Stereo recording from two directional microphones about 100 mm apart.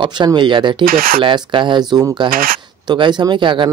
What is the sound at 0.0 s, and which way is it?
Speech, 50° right (ahead or behind).